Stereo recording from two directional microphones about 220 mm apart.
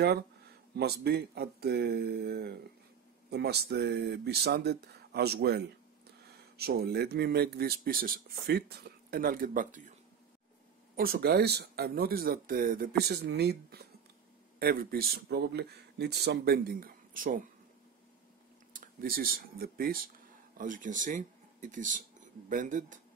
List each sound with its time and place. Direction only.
0.7 s speech: 45° right (ahead or behind)
11.0 s speech: 40° right (ahead or behind)
18.7 s speech: 40° right (ahead or behind)